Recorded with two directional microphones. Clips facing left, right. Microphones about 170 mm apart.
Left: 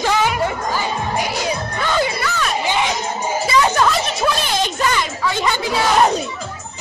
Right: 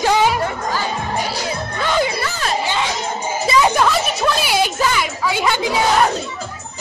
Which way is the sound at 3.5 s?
15° right (ahead or behind).